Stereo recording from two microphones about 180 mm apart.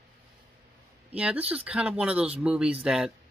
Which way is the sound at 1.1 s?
5° right (ahead or behind).